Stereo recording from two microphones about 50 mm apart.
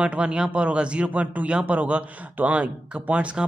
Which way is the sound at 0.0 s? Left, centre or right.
Right.